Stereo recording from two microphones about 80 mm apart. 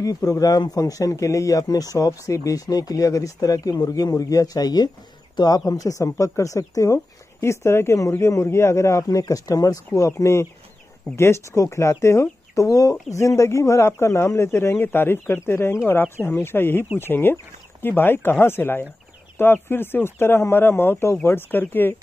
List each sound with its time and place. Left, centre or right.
0.0 s speech: left
5.7 s speech: left